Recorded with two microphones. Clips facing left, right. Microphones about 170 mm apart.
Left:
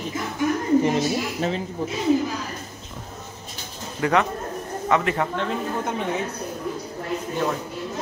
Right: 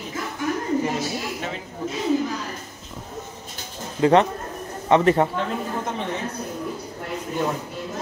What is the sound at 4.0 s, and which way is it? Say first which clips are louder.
A man's voice: right 5 dB; 25° right (ahead or behind).